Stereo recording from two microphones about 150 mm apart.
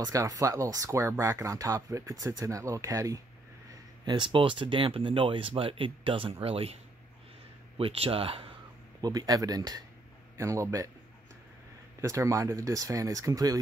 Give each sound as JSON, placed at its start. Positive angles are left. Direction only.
{"t": 0.0, "sound": "speech", "side_deg": -25}
{"t": 9.0, "sound": "speech", "side_deg": -25}
{"t": 12.0, "sound": "speech", "side_deg": -20}